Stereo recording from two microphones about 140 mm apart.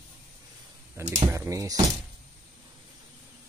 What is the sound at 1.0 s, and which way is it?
Speech, 20° right (ahead or behind).